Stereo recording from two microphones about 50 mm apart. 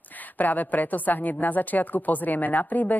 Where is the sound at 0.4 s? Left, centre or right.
Left.